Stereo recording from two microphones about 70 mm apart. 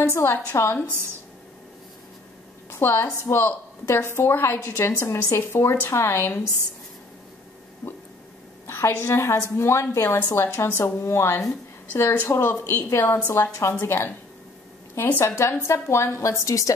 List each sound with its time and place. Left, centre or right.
0.1 s a woman's voice: left
2.7 s a woman's voice: left
8.6 s a sound: left
8.9 s a woman's voice: left
15.1 s a woman's voice: left